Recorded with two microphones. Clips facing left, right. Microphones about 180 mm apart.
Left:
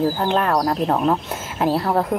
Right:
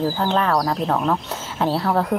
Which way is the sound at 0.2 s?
5° left (ahead or behind).